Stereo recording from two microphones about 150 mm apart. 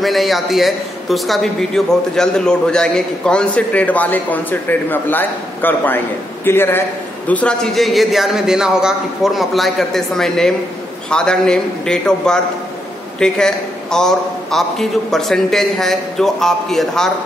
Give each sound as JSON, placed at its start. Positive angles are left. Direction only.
{"t": 0.0, "sound": "a man's voice", "side_deg": 0}